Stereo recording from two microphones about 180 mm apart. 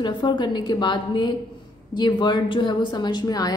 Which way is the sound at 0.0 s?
25° left (ahead or behind).